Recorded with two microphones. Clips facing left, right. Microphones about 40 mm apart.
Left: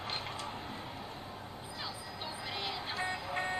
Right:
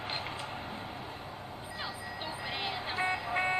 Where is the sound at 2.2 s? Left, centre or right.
Right.